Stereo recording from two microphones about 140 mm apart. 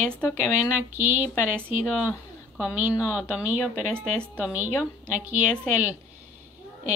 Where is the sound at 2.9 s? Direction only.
20° left (ahead or behind).